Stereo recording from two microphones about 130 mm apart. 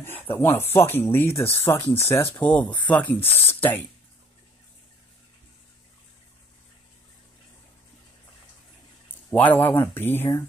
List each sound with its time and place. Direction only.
0.0 s speech: 15° left (ahead or behind)
2.3 s speech: 10° left (ahead or behind)
9.3 s speech: 15° left (ahead or behind)